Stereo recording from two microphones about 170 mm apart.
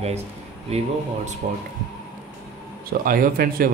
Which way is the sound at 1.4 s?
40° right (ahead or behind).